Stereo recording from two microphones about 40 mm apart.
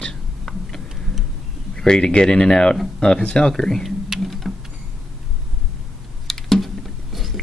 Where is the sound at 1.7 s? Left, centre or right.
Centre.